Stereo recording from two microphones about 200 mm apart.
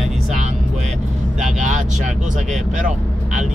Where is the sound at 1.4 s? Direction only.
40° right (ahead or behind).